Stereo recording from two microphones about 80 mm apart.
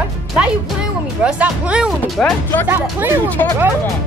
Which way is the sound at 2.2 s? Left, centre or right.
Centre.